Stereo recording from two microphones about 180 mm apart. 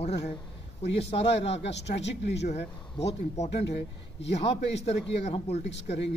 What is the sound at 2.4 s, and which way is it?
Speech, 35° left (ahead or behind).